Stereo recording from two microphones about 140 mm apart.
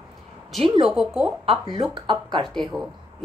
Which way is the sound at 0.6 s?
40° right (ahead or behind).